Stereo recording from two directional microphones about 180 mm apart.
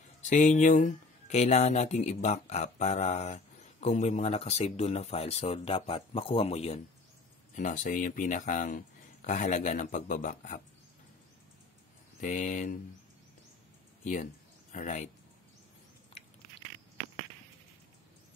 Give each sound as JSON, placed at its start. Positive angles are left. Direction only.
{"t": 0.2, "sound": "speech", "side_deg": 40}
{"t": 12.2, "sound": "speech", "side_deg": 45}
{"t": 14.0, "sound": "speech", "side_deg": 40}